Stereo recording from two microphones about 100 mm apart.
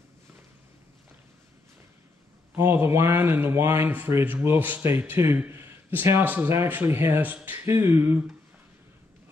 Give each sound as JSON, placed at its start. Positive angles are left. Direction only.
{"t": 2.5, "sound": "a man's voice", "side_deg": -25}